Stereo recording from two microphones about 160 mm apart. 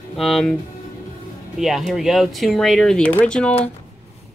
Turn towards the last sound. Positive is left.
turn(degrees=5)  # may be behind; listen again after turning